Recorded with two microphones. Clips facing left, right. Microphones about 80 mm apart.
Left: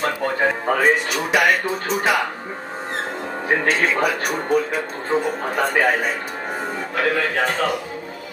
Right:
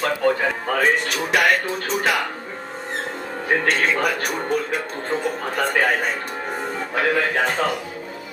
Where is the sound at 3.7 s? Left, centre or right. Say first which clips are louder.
Left 2 dB; centre.